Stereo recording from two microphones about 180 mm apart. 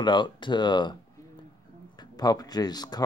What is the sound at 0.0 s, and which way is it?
Speech, 25° left (ahead or behind).